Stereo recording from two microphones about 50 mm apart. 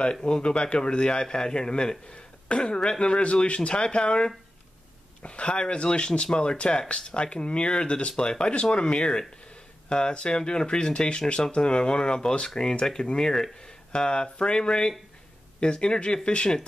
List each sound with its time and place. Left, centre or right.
0.0 s speech: centre